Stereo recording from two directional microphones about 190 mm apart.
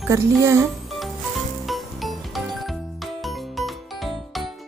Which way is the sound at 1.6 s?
Centre (ahead or behind).